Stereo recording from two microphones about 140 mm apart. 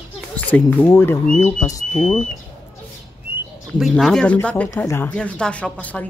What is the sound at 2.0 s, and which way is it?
Speech, 5° left (ahead or behind).